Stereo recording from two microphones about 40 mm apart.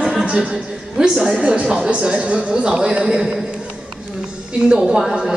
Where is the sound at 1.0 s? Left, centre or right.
Centre.